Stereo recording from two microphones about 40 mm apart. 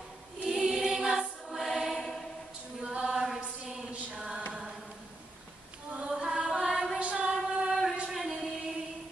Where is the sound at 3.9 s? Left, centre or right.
Right.